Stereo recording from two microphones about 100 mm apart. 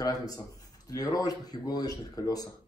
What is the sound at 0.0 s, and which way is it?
Speech, 35° left (ahead or behind).